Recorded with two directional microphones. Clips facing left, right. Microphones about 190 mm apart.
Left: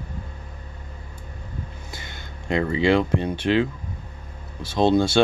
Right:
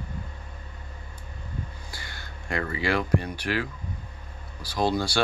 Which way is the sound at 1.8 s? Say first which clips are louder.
Left 3 dB; 20° left (ahead or behind).